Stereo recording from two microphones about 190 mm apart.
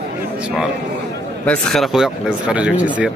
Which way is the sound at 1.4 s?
Centre (ahead or behind).